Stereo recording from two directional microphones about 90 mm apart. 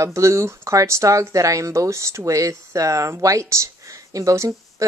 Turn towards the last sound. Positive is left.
turn(degrees=-35)  # may be behind; listen again after turning